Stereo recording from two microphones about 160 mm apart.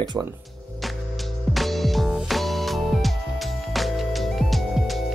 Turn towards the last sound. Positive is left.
turn(degrees=0)  # may be behind; listen again after turning